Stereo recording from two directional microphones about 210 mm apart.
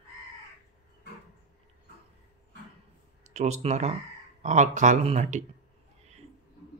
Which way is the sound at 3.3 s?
30° right (ahead or behind).